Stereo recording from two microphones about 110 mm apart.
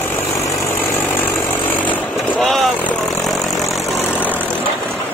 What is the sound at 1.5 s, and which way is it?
Chainsaw, 15° left (ahead or behind).